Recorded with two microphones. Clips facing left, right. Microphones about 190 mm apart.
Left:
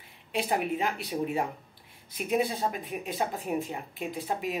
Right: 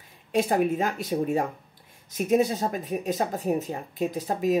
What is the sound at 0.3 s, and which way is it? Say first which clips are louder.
Speech: right 6 dB; 45° right (ahead or behind).